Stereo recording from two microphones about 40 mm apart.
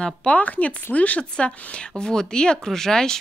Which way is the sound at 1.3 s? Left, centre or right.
Left.